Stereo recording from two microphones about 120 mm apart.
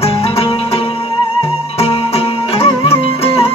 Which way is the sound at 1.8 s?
55° left (ahead or behind).